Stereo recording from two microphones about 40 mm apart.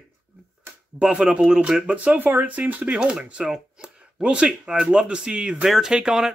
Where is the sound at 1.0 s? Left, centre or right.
Centre.